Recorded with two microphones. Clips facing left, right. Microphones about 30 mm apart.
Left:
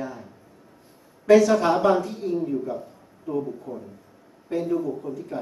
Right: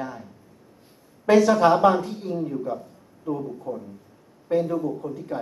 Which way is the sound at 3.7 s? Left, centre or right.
Centre.